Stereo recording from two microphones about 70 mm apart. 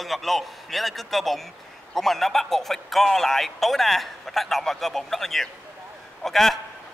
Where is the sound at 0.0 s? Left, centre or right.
Centre.